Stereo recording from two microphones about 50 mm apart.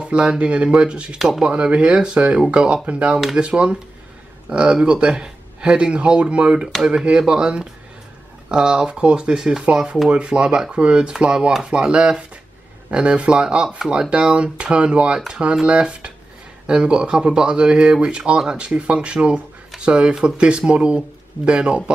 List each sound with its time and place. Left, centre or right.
0.0 s speech: right